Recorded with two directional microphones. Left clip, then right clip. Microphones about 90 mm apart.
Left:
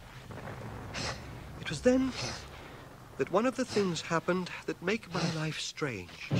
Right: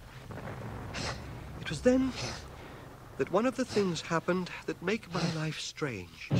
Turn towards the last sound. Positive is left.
turn(degrees=25)  # may be behind; listen again after turning